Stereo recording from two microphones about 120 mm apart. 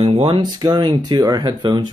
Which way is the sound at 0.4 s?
35° right (ahead or behind).